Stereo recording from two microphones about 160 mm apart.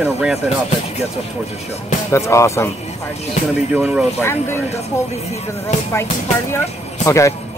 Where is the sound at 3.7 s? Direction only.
10° right (ahead or behind).